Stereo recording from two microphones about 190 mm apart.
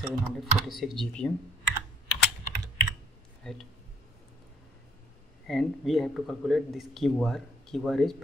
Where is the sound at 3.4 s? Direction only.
Centre (ahead or behind).